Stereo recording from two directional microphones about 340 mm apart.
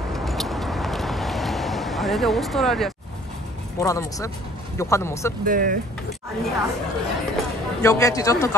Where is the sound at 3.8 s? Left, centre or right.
Centre.